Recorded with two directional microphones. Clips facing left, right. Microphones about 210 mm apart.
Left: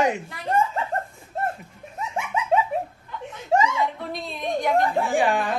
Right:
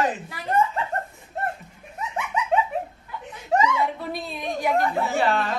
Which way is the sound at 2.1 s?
30° left (ahead or behind).